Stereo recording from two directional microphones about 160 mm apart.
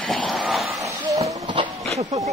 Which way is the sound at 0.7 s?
20° right (ahead or behind).